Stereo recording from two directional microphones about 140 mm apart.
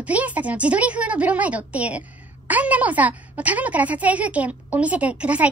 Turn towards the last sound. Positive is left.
turn(degrees=-10)  # may be behind; listen again after turning